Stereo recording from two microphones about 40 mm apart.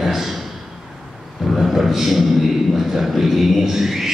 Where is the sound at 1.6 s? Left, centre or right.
Centre.